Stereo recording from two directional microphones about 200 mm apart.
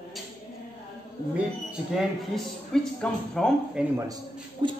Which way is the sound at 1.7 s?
Centre (ahead or behind).